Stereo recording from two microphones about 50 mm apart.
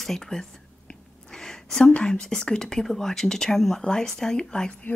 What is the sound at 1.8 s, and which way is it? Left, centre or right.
Speech, centre.